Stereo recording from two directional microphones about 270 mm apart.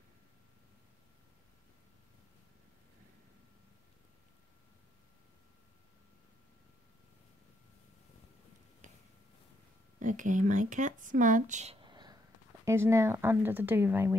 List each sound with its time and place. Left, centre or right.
9.9 s speech: right; by 14.1 s centre